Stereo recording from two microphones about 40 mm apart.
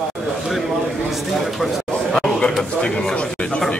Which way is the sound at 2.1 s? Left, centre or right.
Centre.